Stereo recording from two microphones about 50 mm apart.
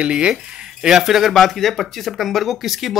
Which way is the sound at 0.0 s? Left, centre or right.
Right.